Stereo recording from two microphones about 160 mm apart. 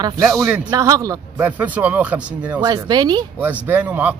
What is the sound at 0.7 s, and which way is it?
Speech, 20° right (ahead or behind).